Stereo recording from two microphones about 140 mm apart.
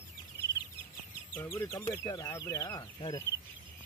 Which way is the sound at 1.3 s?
15° left (ahead or behind).